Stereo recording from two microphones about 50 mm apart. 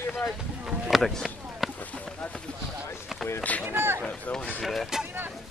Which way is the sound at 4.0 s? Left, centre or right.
Centre.